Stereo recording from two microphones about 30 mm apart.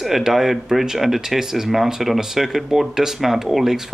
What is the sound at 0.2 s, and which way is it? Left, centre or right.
Speech, centre.